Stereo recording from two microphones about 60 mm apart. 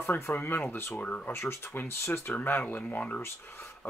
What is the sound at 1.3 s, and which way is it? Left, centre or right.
Speech, left.